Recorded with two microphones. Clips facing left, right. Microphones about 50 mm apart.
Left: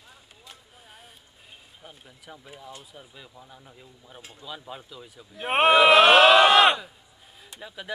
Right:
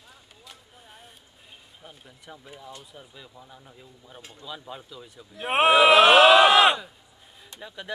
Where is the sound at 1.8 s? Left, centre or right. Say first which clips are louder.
Right 1 dB; centre.